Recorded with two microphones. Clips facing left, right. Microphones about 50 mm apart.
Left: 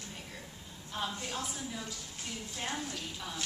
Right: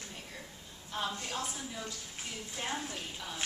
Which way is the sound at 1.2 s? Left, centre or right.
Centre.